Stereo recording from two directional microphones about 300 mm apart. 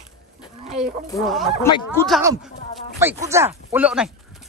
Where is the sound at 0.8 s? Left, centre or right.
Centre.